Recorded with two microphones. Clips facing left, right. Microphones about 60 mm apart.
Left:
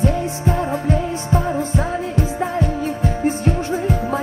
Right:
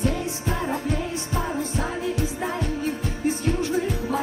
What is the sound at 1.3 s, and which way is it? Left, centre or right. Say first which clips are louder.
Music: left 7 dB; left.